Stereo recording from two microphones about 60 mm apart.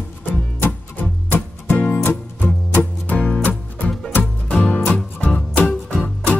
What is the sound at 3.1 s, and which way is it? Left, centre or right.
Music, centre.